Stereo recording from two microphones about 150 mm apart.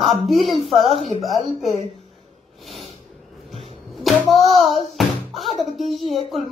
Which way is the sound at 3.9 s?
Centre (ahead or behind).